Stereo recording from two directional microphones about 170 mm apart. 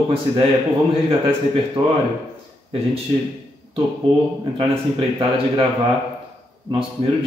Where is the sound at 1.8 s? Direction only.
25° right (ahead or behind).